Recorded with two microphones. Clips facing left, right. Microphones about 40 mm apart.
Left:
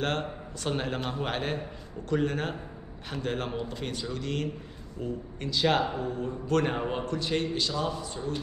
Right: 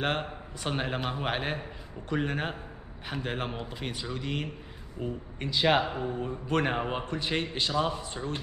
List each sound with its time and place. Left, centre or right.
0.0 s a man's voice: centre; by 8.4 s right